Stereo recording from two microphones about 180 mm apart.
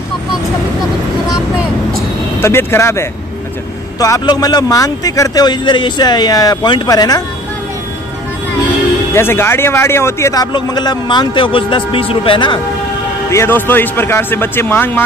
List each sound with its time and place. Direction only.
2.4 s a man's voice: 15° left (ahead or behind)
9.1 s a man's voice: 15° left (ahead or behind)
13.3 s a man's voice: 15° left (ahead or behind)